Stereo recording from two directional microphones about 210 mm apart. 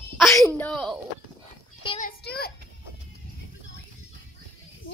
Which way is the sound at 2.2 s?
45° left (ahead or behind).